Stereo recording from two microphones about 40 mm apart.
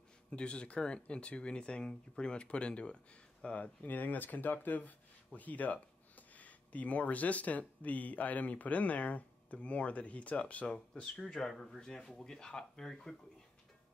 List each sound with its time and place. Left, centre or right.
0.3 s speech: left
3.8 s speech: left
11.0 s speech: centre